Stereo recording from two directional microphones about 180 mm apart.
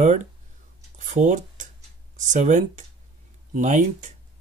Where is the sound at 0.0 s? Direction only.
40° right (ahead or behind).